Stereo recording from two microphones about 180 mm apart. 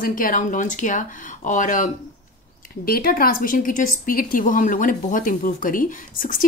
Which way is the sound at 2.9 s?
55° left (ahead or behind).